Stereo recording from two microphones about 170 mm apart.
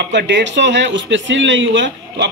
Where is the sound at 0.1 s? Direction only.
90° right.